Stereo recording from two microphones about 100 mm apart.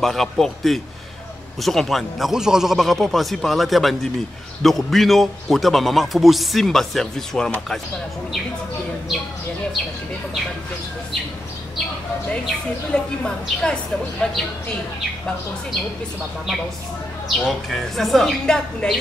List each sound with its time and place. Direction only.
0.0 s a man's voice: 5° left (ahead or behind)
12.4 s speech: 10° left (ahead or behind)
17.5 s a man's voice: centre (ahead or behind)